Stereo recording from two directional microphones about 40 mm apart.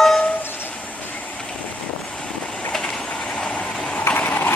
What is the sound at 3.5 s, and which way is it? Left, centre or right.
Vehicle, centre.